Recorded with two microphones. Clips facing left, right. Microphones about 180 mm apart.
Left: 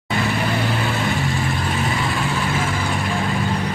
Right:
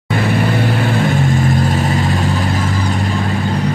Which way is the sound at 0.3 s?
55° right (ahead or behind).